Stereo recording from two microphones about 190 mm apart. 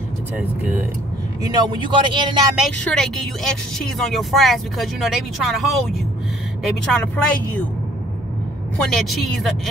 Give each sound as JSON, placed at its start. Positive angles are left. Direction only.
{"t": 0.4, "sound": "speech", "side_deg": -10}
{"t": 1.5, "sound": "a man's voice", "side_deg": -20}
{"t": 2.8, "sound": "speech", "side_deg": 5}
{"t": 8.7, "sound": "speech", "side_deg": 0}